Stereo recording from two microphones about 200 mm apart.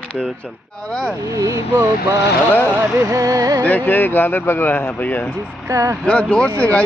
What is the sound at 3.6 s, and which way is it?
Speech, 10° left (ahead or behind).